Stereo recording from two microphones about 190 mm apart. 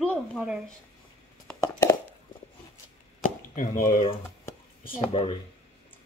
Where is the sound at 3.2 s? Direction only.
45° left (ahead or behind).